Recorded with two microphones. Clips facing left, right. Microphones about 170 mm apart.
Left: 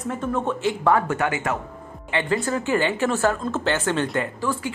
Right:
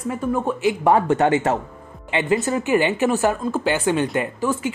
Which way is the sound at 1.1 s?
35° right (ahead or behind).